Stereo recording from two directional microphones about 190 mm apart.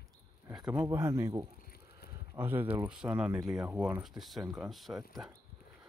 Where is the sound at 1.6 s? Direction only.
55° left (ahead or behind).